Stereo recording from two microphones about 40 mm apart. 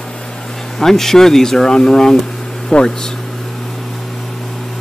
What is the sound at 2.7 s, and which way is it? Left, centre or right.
Speech, left.